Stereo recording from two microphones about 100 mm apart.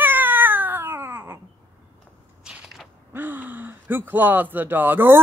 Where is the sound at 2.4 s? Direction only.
5° right (ahead or behind).